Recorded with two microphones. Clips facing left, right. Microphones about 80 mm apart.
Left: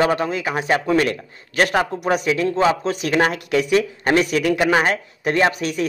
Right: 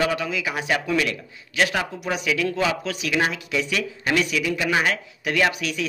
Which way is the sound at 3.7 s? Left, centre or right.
Left.